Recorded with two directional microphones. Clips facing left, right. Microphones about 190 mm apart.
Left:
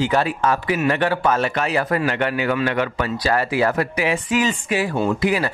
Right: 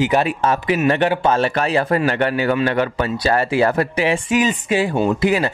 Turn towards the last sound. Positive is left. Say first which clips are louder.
# right 3 dB
turn(degrees=-25)  # may be behind; listen again after turning